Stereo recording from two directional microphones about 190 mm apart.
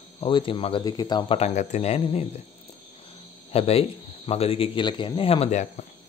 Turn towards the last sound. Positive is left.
turn(degrees=40)  # may be behind; listen again after turning